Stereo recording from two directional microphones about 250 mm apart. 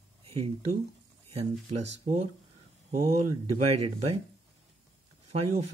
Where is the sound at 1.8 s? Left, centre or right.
Right.